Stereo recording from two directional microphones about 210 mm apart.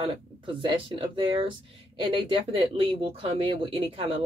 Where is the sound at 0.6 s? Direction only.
25° right (ahead or behind).